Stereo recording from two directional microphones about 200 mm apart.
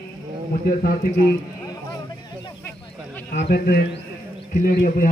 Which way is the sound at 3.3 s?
50° left (ahead or behind).